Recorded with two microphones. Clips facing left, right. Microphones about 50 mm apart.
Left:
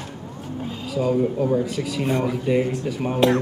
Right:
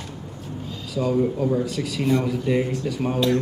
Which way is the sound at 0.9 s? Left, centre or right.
Centre.